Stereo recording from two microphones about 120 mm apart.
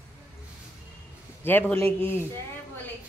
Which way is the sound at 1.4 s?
15° left (ahead or behind).